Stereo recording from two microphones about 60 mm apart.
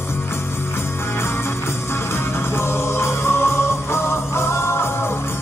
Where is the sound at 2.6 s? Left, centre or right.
Left.